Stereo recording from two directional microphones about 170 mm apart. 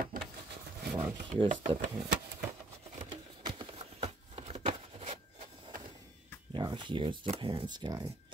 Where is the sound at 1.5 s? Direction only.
45° right (ahead or behind).